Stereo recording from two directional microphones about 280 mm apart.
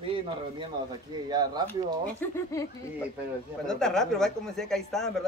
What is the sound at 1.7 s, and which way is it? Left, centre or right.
Speech, centre.